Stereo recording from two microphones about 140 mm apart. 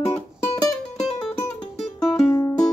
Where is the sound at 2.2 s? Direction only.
20° left (ahead or behind).